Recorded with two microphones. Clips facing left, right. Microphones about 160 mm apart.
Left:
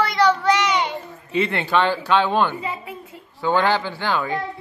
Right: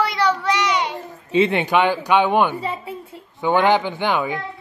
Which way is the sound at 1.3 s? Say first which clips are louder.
Right 4 dB; 20° right (ahead or behind).